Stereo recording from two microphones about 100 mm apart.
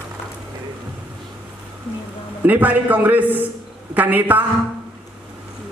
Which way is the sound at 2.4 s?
15° right (ahead or behind).